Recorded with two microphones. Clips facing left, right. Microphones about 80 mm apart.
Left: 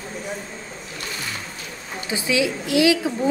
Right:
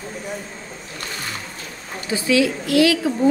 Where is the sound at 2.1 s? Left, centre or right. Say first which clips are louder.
Right 4 dB; centre.